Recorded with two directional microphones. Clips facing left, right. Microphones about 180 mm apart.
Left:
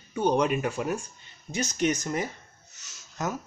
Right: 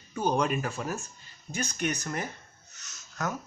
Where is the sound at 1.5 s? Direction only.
55° right (ahead or behind).